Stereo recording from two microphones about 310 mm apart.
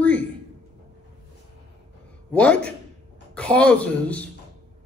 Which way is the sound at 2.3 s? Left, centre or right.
Centre.